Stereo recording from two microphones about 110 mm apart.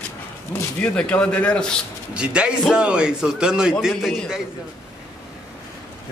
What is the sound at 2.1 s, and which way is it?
A man's voice, 10° right (ahead or behind).